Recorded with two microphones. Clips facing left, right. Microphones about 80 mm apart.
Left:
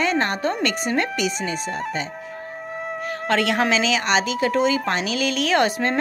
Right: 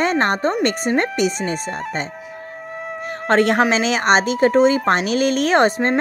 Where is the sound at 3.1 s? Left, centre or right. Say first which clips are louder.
Right 6 dB; right.